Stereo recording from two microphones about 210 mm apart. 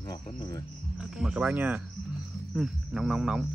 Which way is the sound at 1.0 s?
5° right (ahead or behind).